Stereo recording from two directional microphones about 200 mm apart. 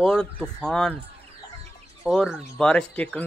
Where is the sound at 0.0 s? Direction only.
5° left (ahead or behind).